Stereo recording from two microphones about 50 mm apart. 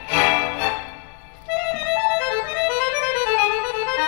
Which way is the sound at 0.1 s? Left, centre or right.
Centre.